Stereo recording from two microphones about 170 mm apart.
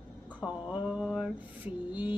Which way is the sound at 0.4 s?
5° right (ahead or behind).